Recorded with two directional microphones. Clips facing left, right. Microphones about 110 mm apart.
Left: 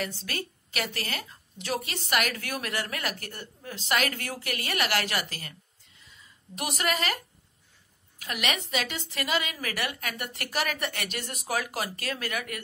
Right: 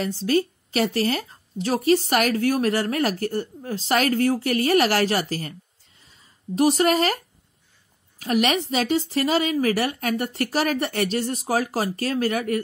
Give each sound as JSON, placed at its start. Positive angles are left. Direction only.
{"t": 0.0, "sound": "a woman's voice", "side_deg": -30}
{"t": 5.9, "sound": "a sound", "side_deg": -35}
{"t": 8.2, "sound": "a woman's voice", "side_deg": -35}